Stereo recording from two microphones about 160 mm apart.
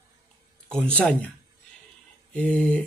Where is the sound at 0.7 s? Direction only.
5° left (ahead or behind).